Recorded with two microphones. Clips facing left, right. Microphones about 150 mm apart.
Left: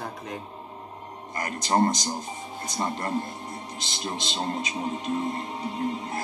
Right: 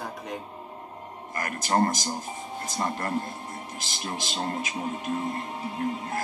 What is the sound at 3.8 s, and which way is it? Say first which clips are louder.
Speech: left 2 dB; 20° left (ahead or behind).